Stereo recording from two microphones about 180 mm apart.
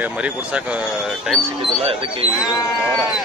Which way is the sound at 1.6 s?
30° right (ahead or behind).